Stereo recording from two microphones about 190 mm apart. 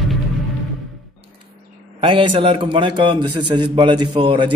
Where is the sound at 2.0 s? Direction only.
25° right (ahead or behind).